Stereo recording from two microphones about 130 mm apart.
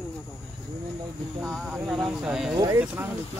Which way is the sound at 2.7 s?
15° right (ahead or behind).